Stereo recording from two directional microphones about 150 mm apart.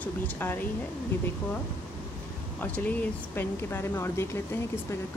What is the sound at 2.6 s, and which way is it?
Speech, 10° left (ahead or behind).